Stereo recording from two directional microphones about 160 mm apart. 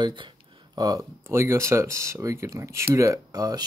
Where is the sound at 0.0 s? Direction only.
30° right (ahead or behind).